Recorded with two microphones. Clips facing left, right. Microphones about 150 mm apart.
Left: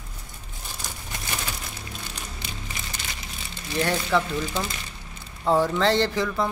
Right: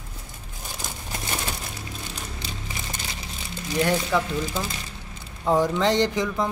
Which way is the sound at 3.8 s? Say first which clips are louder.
Even; 10° right (ahead or behind).